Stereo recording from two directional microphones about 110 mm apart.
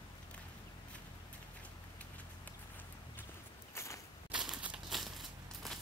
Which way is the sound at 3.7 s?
25° left (ahead or behind).